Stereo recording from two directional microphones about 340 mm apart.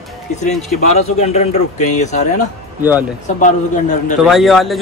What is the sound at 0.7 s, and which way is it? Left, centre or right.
Speech, centre.